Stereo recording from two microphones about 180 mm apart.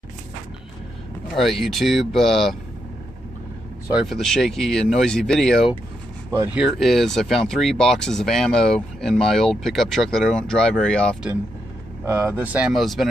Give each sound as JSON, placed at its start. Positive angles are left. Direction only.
{"t": 1.3, "sound": "speech", "side_deg": 0}
{"t": 3.9, "sound": "speech", "side_deg": 0}
{"t": 6.3, "sound": "speech", "side_deg": -15}
{"t": 6.6, "sound": "speech", "side_deg": 0}
{"t": 12.0, "sound": "speech", "side_deg": -15}